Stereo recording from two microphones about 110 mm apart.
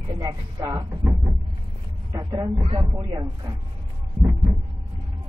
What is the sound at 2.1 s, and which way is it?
Speech, 40° right (ahead or behind).